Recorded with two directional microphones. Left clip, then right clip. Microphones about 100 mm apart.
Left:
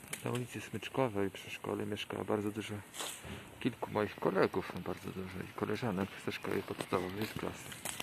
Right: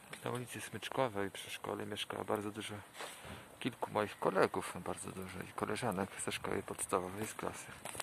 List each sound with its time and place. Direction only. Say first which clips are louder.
0.9 s speech: left 2 dB; 5° right (ahead or behind)
3.6 s speech: left 1 dB; 20° right (ahead or behind)